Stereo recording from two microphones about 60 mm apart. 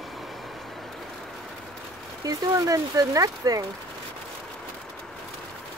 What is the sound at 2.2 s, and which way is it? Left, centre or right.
Speech, right.